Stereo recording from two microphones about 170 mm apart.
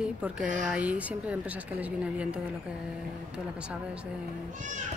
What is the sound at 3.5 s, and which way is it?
Speech, 5° right (ahead or behind).